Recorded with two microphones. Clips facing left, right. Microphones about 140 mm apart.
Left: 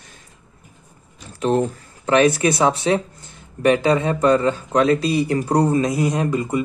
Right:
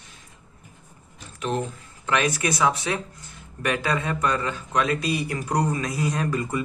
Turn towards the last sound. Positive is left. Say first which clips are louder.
# left 5 dB
turn(degrees=25)  # may be behind; listen again after turning